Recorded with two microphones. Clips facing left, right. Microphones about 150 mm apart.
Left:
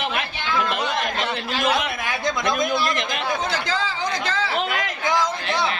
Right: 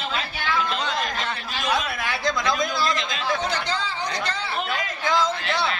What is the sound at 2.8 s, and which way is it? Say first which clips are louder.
Chatter: left 1 dB; 60° left (ahead or behind).